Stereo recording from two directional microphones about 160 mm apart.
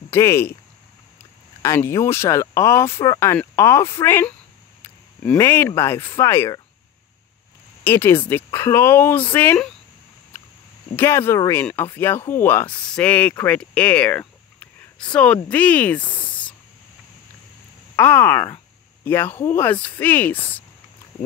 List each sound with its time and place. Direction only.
0.1 s speech: 15° left (ahead or behind)
1.6 s speech: 15° left (ahead or behind)
7.8 s speech: 15° left (ahead or behind)
11.0 s speech: 15° left (ahead or behind)
17.9 s speech: 15° left (ahead or behind)